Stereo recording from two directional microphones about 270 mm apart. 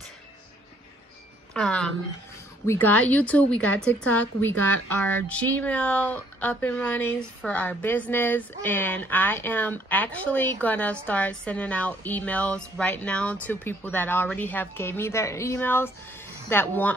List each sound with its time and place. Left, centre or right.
1.5 s speech: centre